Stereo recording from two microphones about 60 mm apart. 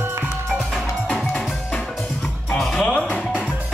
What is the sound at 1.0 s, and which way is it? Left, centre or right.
Music, centre.